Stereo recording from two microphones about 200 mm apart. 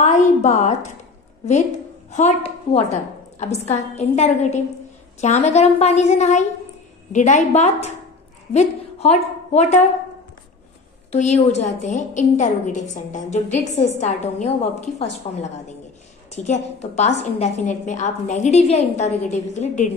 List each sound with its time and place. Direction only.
0.0 s a woman's voice: 35° left (ahead or behind)
2.0 s a woman's voice: 35° left (ahead or behind)
11.1 s a woman's voice: 35° left (ahead or behind)